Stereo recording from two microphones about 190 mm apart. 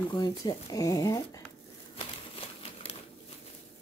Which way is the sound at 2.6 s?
30° left (ahead or behind).